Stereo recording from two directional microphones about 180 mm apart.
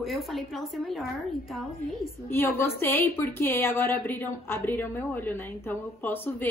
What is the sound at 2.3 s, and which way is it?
Speech, 10° left (ahead or behind).